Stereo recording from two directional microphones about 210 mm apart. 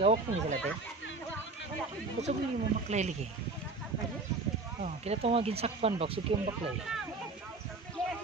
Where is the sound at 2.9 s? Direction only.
35° right (ahead or behind).